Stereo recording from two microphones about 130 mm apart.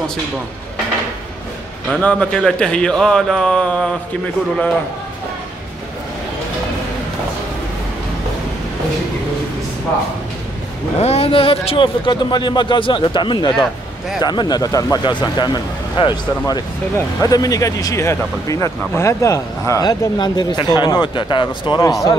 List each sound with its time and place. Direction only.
2.0 s speech: 10° left (ahead or behind)
11.0 s speech: 50° left (ahead or behind); by 21.9 s 35° left (ahead or behind)